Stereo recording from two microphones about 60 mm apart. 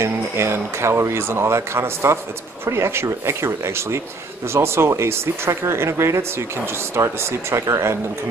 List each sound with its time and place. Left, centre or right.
0.0 s speech: right